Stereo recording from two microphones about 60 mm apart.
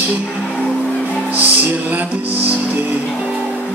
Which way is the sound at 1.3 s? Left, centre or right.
Right.